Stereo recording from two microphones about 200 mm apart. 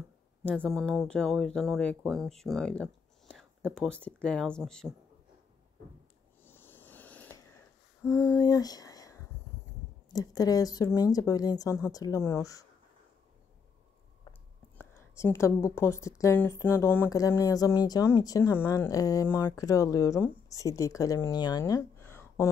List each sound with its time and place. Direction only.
0.4 s speech: 5° left (ahead or behind)
6.4 s a sound: 10° left (ahead or behind)
10.1 s speech: 20° left (ahead or behind)
14.8 s speech: 10° left (ahead or behind)